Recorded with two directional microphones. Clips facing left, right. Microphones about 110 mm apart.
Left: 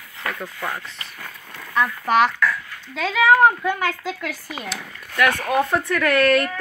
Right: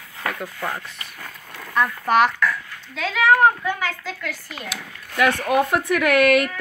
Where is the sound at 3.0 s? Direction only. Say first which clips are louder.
Left 1 dB; 5° left (ahead or behind).